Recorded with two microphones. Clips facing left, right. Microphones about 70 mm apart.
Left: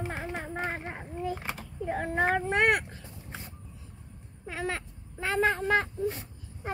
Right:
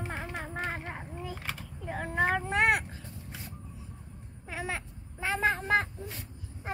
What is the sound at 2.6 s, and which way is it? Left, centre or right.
Vehicle, centre.